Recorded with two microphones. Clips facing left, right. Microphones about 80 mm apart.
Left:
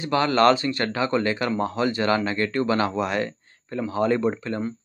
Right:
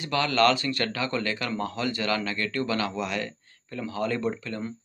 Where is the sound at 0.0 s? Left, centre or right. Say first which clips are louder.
Left 4 dB; left.